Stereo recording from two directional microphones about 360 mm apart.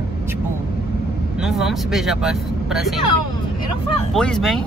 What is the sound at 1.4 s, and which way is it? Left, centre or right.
Speech, centre.